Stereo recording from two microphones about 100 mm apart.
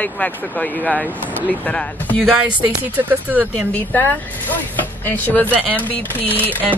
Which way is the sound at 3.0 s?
20° right (ahead or behind).